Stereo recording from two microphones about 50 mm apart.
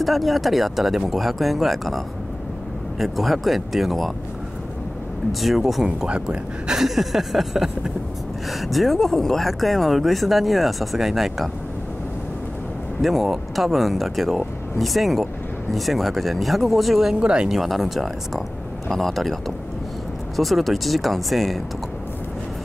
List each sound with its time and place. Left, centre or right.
0.0 s speech: centre
5.4 s speech: centre
5.9 s speech: centre
6.8 s speech: centre
13.0 s speech: centre
17.2 s speech: centre
17.5 s speech: centre
18.9 s speech: centre